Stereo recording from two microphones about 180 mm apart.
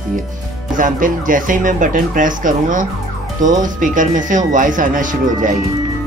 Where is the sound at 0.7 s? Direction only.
50° right (ahead or behind).